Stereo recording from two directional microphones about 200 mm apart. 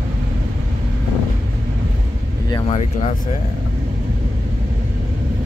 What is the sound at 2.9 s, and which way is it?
Speech, 40° left (ahead or behind).